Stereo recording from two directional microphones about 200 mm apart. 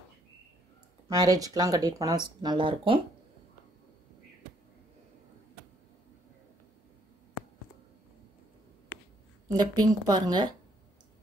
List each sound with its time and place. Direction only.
1.0 s speech: 20° right (ahead or behind)
9.5 s speech: 20° right (ahead or behind)